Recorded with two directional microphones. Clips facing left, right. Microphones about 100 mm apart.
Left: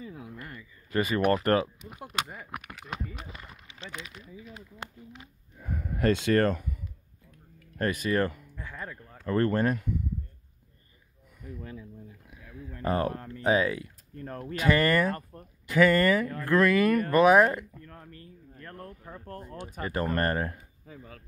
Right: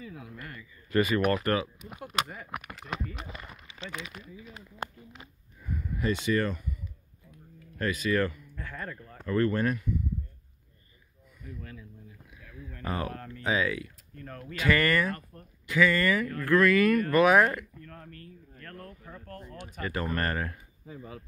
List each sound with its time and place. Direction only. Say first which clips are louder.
0.0 s a sound: left 1 dB; 30° left (ahead or behind)
5.6 s speech: left 4 dB; 55° left (ahead or behind)
7.8 s speech: left 1 dB; 45° left (ahead or behind)
8.5 s speech: right 1 dB; 10° left (ahead or behind)
9.2 s speech: left 1 dB; 40° left (ahead or behind)
11.4 s speech: left 3 dB; 25° left (ahead or behind)
12.8 s speech: left 6 dB; 40° left (ahead or behind)
13.1 s speech: left 3 dB; 15° left (ahead or behind)
13.5 s speech: left 4 dB; 35° left (ahead or behind)
16.3 s speech: even; 25° left (ahead or behind)
17.8 s speech: right 1 dB; 10° left (ahead or behind); by 20.6 s 30° left (ahead or behind)
20.8 s speech: right 5 dB; 5° right (ahead or behind)